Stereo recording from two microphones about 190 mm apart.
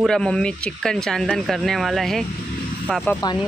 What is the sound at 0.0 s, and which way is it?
Speech, 5° left (ahead or behind).